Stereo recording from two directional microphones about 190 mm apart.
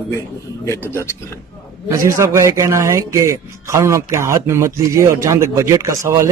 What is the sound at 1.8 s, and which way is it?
A man's voice, 15° right (ahead or behind).